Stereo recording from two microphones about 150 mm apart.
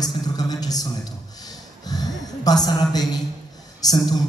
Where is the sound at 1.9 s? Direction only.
25° left (ahead or behind).